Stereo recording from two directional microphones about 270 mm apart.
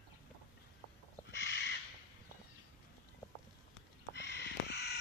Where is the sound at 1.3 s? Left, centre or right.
Left.